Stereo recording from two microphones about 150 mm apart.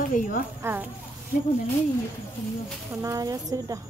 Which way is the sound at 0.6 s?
15° right (ahead or behind).